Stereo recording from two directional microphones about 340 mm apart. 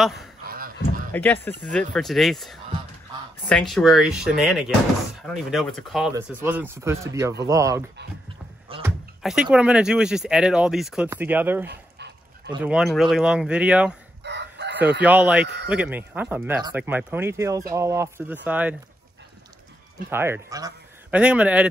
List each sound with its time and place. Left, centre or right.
0.0 s speech: centre
8.6 s music: centre
9.2 s speech: centre
11.6 s dog: right
12.4 s speech: centre
14.2 s chicken: right
15.0 s speech: centre
15.4 s speech: right
15.7 s speech: centre
20.1 s speech: centre